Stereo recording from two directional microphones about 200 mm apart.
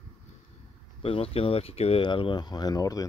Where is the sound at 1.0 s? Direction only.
30° left (ahead or behind).